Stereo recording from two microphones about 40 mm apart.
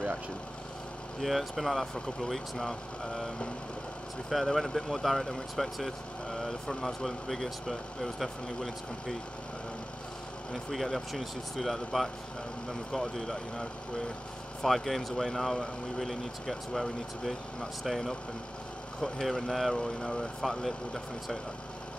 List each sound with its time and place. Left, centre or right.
1.2 s speech: centre
2.0 s speech: centre
2.2 s speech: centre
4.3 s speech: centre
10.7 s speech: centre
13.1 s speech: centre
19.2 s speech: centre
19.8 s speech: centre
20.2 s speech: centre